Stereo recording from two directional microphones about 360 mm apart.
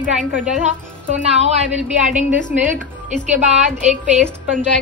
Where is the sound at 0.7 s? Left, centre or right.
Centre.